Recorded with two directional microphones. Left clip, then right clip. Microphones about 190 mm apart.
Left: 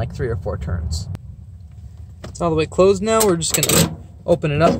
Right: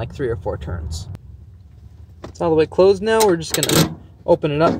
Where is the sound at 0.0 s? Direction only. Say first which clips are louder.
Right 2 dB; 25° right (ahead or behind).